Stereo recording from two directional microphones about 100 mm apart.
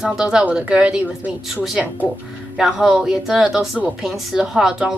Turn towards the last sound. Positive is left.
turn(degrees=-10)  # may be behind; listen again after turning